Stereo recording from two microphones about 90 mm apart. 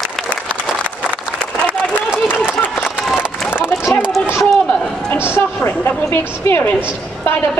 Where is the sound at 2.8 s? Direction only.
5° left (ahead or behind).